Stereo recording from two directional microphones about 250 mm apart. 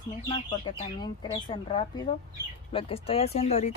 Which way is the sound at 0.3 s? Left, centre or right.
Centre.